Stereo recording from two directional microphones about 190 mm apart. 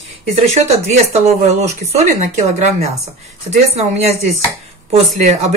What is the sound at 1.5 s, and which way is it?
Speech, 35° right (ahead or behind).